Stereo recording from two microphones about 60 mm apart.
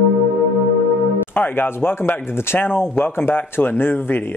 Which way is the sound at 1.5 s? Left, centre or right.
Left.